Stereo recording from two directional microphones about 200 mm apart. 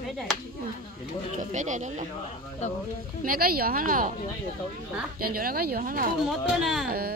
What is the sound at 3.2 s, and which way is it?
Speech, 45° right (ahead or behind).